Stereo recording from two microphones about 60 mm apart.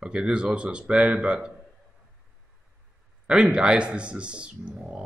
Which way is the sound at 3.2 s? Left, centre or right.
Centre.